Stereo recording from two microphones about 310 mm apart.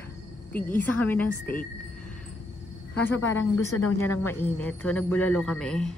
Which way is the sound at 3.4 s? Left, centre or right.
Left.